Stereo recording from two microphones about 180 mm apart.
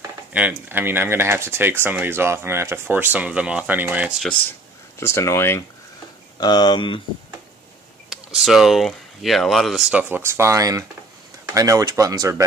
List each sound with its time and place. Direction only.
0.3 s speech: 10° right (ahead or behind)
4.5 s speech: 15° left (ahead or behind)
8.1 s speech: centre (ahead or behind); by 12.4 s 20° right (ahead or behind)